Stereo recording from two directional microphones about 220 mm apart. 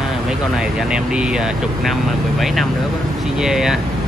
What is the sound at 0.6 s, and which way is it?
Speech, 5° right (ahead or behind).